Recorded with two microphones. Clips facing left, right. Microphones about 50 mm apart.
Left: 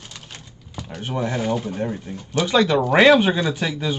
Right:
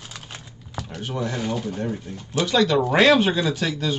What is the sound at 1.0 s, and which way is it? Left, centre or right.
Speech, left.